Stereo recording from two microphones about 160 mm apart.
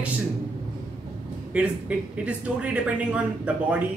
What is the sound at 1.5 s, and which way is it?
Speech, 10° right (ahead or behind).